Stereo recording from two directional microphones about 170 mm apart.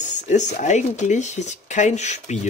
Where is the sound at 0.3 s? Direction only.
45° left (ahead or behind).